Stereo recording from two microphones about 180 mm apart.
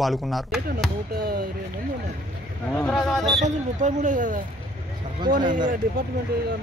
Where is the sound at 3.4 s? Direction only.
40° right (ahead or behind).